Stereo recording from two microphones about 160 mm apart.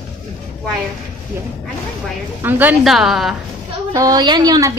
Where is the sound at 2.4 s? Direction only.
10° right (ahead or behind).